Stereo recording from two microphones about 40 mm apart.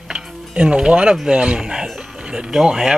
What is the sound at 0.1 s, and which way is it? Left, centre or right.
Music, right.